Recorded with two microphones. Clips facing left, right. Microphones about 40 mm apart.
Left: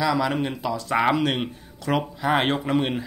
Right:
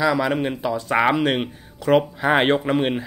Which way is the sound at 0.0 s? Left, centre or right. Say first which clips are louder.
Right 3 dB; centre.